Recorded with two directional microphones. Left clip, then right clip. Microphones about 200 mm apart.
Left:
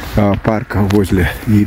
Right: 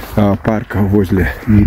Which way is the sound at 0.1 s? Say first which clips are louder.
Even; 5° left (ahead or behind).